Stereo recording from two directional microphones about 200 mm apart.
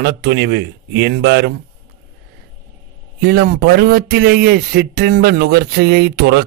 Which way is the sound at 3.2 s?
55° right (ahead or behind).